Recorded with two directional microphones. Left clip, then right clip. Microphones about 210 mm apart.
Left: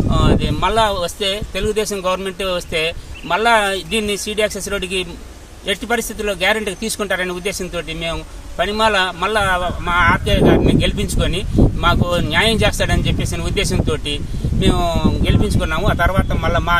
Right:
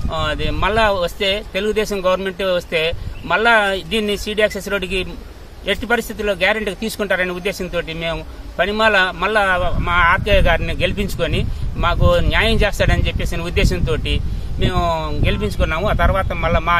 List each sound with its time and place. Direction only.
0.1 s speech: centre (ahead or behind)